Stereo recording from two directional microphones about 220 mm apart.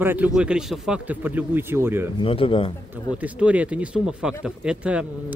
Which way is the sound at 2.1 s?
25° left (ahead or behind).